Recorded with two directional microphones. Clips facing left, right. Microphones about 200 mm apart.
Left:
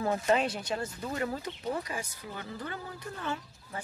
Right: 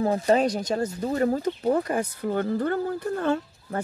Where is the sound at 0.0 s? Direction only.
35° right (ahead or behind).